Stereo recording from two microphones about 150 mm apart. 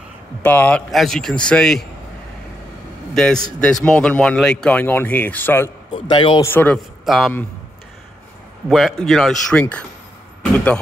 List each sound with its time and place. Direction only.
0.4 s a man's voice: 10° left (ahead or behind)
3.2 s a man's voice: 5° left (ahead or behind)
6.0 s a man's voice: 30° left (ahead or behind)
6.4 s speech: 10° left (ahead or behind)
7.1 s a man's voice: centre (ahead or behind)
8.6 s a man's voice: centre (ahead or behind)